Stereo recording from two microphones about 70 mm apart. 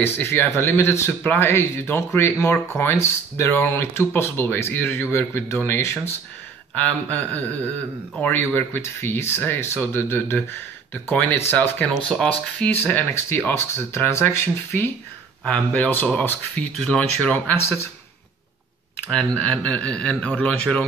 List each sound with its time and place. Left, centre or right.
0.0 s speech: left
6.7 s speech: left
12.1 s speech: centre
12.6 s speech: left
13.5 s speech: left
15.4 s speech: centre
17.6 s speech: left
19.0 s speech: centre